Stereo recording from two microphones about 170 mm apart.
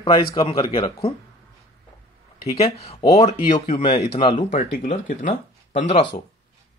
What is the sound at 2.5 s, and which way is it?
A man's voice, 40° left (ahead or behind).